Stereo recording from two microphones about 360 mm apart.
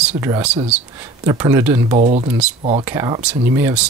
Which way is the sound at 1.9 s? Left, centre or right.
Centre.